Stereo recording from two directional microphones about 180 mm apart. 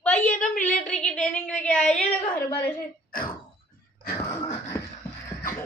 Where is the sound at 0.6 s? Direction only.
5° left (ahead or behind).